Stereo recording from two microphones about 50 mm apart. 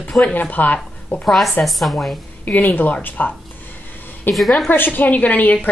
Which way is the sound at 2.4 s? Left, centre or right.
Left.